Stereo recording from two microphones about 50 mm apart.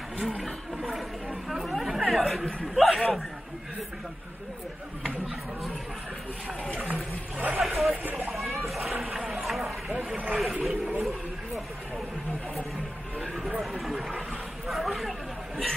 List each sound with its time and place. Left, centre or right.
1.5 s chatter: centre
6.8 s speech: right
7.5 s speech: centre
8.0 s speech: right
8.3 s a sound: centre
9.0 s boat: centre
10.3 s speech: centre
11.0 s a sound: centre
13.6 s speech: centre
14.7 s chatter: centre